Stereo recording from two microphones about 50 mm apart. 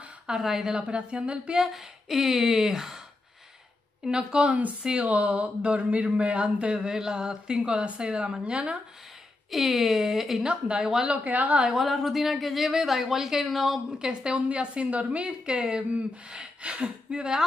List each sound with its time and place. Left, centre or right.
0.3 s speech: centre
0.7 s speech: right
1.7 s speech: centre
4.0 s speech: centre
9.5 s speech: centre
10.4 s speech: right
11.7 s speech: centre
13.9 s speech: centre